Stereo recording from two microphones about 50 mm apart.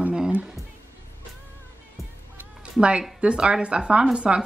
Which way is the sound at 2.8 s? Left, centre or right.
Centre.